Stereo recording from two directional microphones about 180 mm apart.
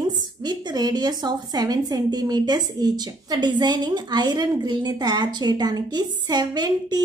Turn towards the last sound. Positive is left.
turn(degrees=-25)  # may be behind; listen again after turning